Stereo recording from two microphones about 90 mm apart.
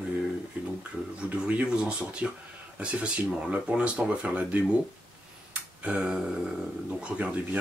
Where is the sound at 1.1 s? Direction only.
15° right (ahead or behind).